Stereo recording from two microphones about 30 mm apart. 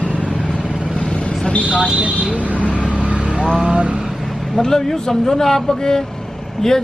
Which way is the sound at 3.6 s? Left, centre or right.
Right.